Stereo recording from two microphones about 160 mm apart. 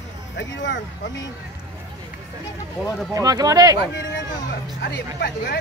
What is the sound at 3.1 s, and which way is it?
Speech, 20° right (ahead or behind).